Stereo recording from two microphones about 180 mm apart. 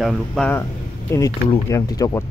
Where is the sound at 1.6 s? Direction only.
20° left (ahead or behind).